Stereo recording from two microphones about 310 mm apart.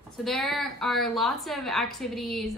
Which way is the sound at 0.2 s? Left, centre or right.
Centre.